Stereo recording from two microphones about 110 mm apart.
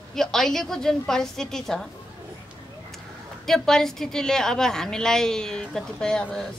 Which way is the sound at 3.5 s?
5° left (ahead or behind).